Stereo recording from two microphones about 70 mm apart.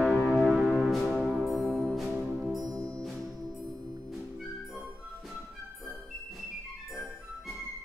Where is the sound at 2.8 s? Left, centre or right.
Centre.